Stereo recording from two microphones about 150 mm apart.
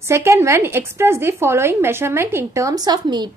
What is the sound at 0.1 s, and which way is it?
A woman's voice, 15° right (ahead or behind).